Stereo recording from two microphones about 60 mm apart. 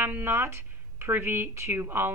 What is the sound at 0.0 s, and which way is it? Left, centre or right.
A woman's voice, right.